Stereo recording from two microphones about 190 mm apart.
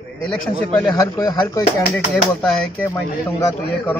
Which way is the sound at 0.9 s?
20° left (ahead or behind).